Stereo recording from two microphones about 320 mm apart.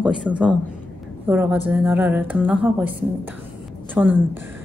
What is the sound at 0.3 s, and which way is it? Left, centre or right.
A woman's voice, centre.